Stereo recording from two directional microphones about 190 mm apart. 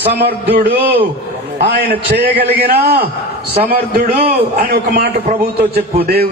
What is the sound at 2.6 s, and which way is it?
A man's voice, 55° right (ahead or behind).